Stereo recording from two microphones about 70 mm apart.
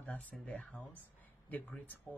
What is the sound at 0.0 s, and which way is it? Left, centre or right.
Speech, centre.